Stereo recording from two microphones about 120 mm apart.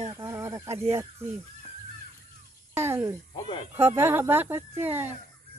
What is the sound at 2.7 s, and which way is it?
Speech, 20° right (ahead or behind).